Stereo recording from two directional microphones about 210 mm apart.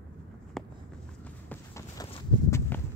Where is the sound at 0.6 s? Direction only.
Centre (ahead or behind).